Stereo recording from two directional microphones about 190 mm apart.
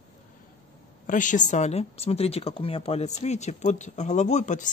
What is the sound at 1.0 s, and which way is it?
Speech, 45° left (ahead or behind).